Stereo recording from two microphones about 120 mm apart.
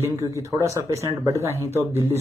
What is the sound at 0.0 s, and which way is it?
Speech, 25° right (ahead or behind).